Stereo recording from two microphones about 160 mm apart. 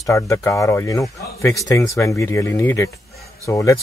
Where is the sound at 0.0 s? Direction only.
20° left (ahead or behind).